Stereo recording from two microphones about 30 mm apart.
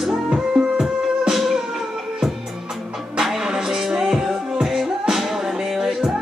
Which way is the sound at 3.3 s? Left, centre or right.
Centre.